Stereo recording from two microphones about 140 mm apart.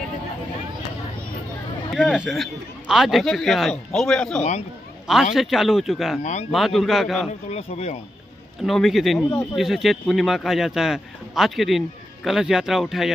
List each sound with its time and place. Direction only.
2.0 s speech: centre (ahead or behind)
4.4 s speech: 55° left (ahead or behind)
5.0 s speech: 5° right (ahead or behind)
7.4 s speech: 50° left (ahead or behind)
8.6 s speech: centre (ahead or behind)